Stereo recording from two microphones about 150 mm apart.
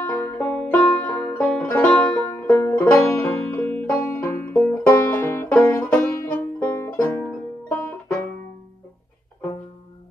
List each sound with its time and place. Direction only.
0.0 s music: 15° left (ahead or behind)
3.1 s banjo: 15° left (ahead or behind)
5.6 s music: 15° left (ahead or behind)